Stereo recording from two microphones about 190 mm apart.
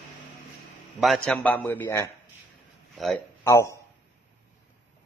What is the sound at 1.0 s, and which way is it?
A man's voice, centre (ahead or behind).